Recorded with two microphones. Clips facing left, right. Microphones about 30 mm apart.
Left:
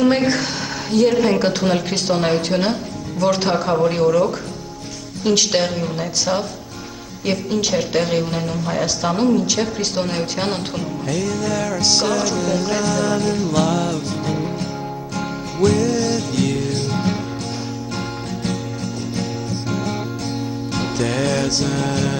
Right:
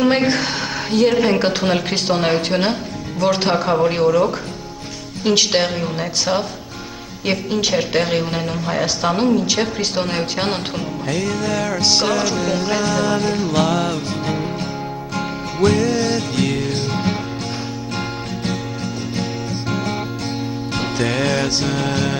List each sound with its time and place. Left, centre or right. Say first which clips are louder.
0.0 s a woman's voice: even; centre
15.1 s music: right 1 dB; right
19.7 s music: right 1 dB; right